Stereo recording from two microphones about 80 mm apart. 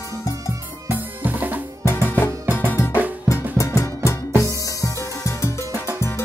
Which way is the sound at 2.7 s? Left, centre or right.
Left.